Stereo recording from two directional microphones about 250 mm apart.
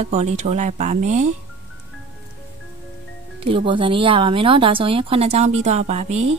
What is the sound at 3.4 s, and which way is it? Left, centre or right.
A woman's voice, right.